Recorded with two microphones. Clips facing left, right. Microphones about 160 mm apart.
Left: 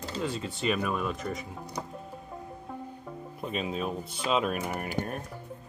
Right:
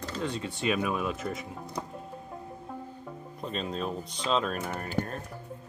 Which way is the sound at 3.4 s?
5° left (ahead or behind).